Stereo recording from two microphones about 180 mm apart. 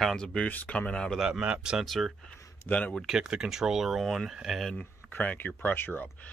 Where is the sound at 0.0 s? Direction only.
5° left (ahead or behind).